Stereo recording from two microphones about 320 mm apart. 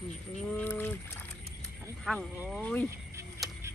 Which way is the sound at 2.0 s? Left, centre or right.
Centre.